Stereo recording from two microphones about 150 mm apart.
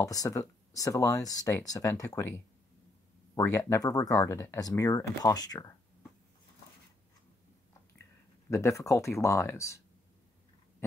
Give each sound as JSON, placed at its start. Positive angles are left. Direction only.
{"t": 0.0, "sound": "speech", "side_deg": 25}
{"t": 3.3, "sound": "speech", "side_deg": 20}
{"t": 8.5, "sound": "speech", "side_deg": 20}